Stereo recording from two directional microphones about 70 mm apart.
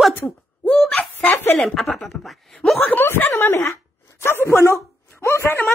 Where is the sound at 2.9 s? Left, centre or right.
Left.